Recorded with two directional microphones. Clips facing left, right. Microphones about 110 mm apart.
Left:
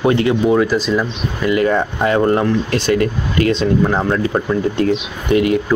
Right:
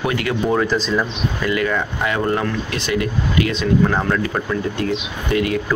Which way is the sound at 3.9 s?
20° left (ahead or behind).